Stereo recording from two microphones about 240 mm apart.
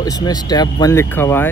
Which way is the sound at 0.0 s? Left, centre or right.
Centre.